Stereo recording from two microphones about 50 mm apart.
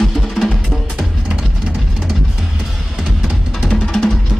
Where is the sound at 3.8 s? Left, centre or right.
Centre.